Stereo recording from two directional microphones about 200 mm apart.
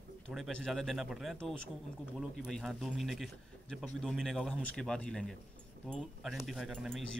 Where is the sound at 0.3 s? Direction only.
Centre (ahead or behind).